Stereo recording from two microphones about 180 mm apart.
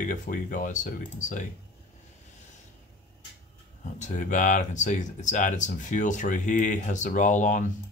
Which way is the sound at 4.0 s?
45° left (ahead or behind).